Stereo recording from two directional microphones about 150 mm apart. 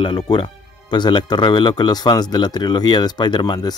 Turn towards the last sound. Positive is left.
turn(degrees=25)  # may be behind; listen again after turning